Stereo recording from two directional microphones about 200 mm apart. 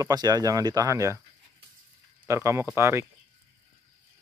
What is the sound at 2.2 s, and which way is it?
Speech, 15° right (ahead or behind).